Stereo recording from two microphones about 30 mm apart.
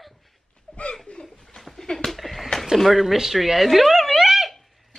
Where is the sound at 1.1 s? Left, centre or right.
Left.